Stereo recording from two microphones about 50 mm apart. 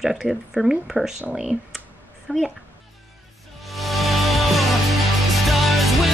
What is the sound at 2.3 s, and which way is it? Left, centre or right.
Speech, right.